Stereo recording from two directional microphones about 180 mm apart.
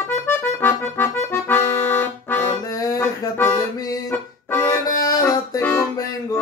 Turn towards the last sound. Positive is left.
turn(degrees=15)  # may be behind; listen again after turning